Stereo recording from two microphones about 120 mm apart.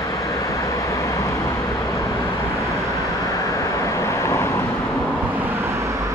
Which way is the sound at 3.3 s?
25° left (ahead or behind).